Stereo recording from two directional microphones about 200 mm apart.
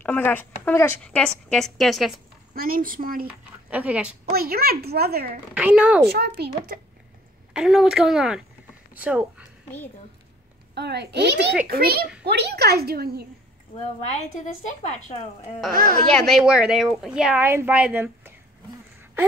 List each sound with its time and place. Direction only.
0.0 s a woman's voice: 10° left (ahead or behind)
2.5 s speech: 45° right (ahead or behind)
3.3 s speech: 5° right (ahead or behind)
4.3 s speech: 50° right (ahead or behind)
5.5 s speech: 5° right (ahead or behind)
6.0 s speech: 50° right (ahead or behind)
7.5 s a woman's voice: 5° right (ahead or behind)
10.7 s a woman's voice: 55° right (ahead or behind)
14.0 s a woman's voice: 35° left (ahead or behind)
15.7 s speech: 50° right (ahead or behind)
16.1 s a woman's voice: centre (ahead or behind)